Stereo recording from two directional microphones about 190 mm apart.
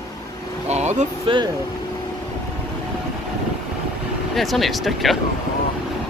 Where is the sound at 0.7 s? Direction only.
35° right (ahead or behind).